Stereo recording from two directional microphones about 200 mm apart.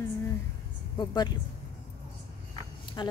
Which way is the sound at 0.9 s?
20° left (ahead or behind).